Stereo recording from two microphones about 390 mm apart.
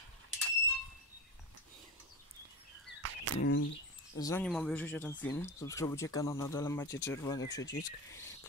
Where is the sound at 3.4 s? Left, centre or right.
Left.